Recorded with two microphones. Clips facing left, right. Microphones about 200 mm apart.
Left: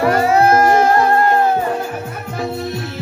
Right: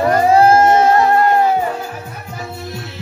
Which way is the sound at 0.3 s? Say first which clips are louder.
Right 3 dB; 30° right (ahead or behind).